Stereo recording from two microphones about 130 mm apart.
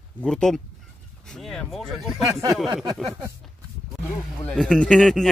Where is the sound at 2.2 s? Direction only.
25° right (ahead or behind).